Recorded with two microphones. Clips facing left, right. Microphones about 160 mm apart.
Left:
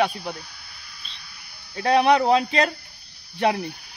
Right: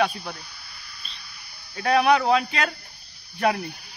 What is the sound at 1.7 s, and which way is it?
Speech, 25° left (ahead or behind).